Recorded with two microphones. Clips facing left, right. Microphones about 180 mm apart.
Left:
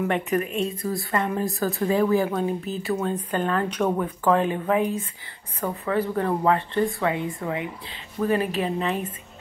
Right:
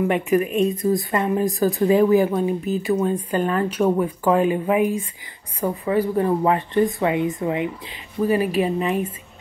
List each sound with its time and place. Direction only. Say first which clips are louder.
0.1 s speech: right 5 dB; 10° right (ahead or behind)